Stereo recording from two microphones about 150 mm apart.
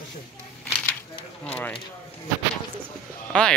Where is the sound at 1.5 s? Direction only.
10° left (ahead or behind).